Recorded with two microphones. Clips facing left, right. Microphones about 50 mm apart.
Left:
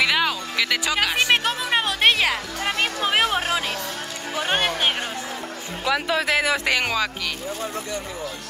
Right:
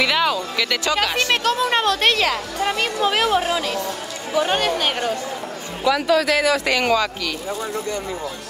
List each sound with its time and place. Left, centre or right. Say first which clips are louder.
0.0 s speech: right 2 dB; centre
1.6 s speech: right 3 dB; centre
6.8 s speech: right 5 dB; centre